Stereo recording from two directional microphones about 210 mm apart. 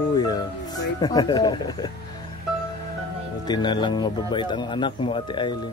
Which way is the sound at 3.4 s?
20° left (ahead or behind).